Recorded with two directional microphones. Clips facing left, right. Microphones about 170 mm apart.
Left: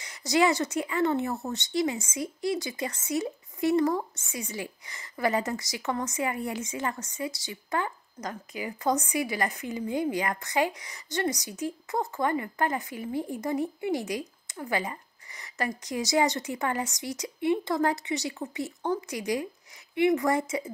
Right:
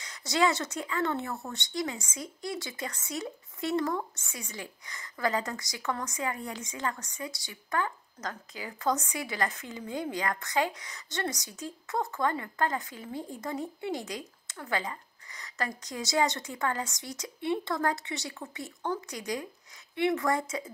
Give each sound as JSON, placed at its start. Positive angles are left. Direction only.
{"t": 0.0, "sound": "a woman's voice", "side_deg": 20}